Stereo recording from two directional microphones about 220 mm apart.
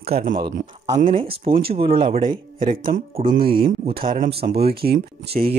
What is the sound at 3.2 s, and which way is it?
A man's voice, 40° right (ahead or behind).